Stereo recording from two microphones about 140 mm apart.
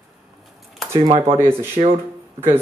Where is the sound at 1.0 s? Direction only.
40° right (ahead or behind).